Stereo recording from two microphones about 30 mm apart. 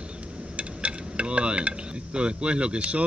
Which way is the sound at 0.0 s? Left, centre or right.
Right.